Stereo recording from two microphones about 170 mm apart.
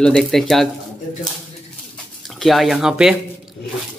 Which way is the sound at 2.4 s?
Centre (ahead or behind).